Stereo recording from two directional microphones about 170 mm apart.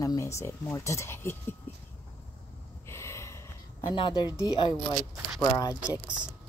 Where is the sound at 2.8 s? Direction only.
15° left (ahead or behind).